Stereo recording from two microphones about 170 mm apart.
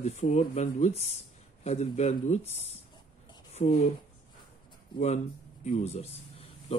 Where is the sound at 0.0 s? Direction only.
45° left (ahead or behind).